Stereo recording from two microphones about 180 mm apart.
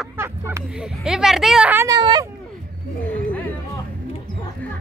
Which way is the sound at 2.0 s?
25° right (ahead or behind).